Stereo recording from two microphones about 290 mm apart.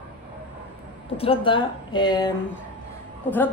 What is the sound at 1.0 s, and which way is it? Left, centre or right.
A woman's voice, centre.